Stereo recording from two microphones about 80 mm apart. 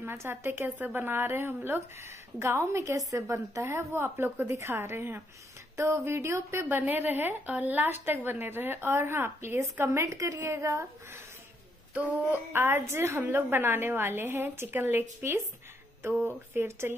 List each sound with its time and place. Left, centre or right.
0.0 s a woman's voice: right
6.7 s a woman's voice: right
11.9 s a woman's voice: right